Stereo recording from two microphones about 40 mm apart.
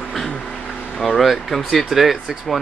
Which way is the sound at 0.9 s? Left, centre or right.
Centre.